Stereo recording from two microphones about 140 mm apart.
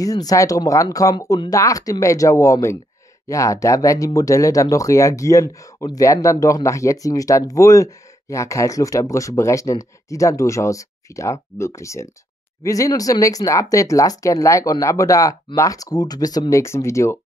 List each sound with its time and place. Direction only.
0.0 s speech: 25° left (ahead or behind)